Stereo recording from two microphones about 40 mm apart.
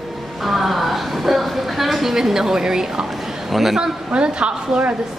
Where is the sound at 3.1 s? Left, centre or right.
Centre.